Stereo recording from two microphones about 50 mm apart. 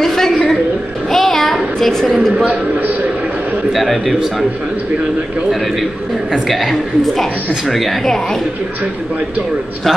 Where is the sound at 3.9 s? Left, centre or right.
Centre.